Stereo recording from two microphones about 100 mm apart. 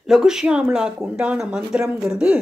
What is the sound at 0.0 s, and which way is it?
Speech, 5° right (ahead or behind).